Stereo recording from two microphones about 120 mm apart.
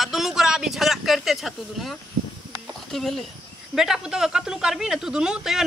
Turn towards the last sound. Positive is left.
turn(degrees=-5)  # may be behind; listen again after turning